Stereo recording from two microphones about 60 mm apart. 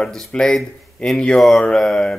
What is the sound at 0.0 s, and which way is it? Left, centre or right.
A man's voice, centre.